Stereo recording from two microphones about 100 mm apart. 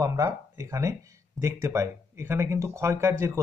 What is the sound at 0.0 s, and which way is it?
A man's voice, 35° right (ahead or behind).